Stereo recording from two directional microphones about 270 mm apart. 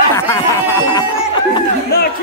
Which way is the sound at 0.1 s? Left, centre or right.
Centre.